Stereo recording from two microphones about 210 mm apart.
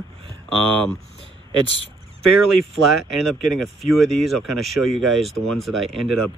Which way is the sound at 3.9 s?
Centre (ahead or behind).